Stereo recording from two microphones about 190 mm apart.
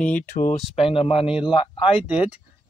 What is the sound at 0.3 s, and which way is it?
Speech, 50° left (ahead or behind).